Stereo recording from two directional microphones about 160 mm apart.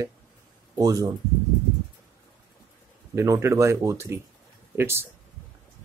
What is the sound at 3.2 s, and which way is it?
Speech, 15° right (ahead or behind).